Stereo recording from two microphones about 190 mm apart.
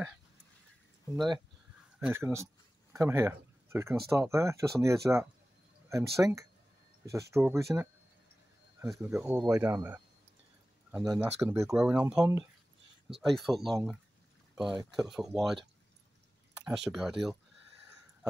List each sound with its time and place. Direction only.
2.0 s speech: 10° right (ahead or behind)
8.8 s speech: centre (ahead or behind)
9.5 s speech: 15° right (ahead or behind)
11.1 s speech: 10° right (ahead or behind)
12.2 s speech: 15° right (ahead or behind)
13.2 s speech: centre (ahead or behind)
15.0 s speech: centre (ahead or behind)
16.6 s speech: centre (ahead or behind)